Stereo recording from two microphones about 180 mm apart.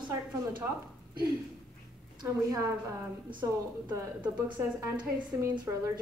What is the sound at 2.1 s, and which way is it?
Speech, 20° right (ahead or behind).